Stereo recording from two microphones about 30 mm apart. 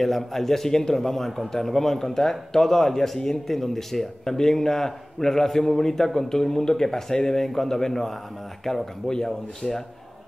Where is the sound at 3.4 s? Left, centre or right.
Centre.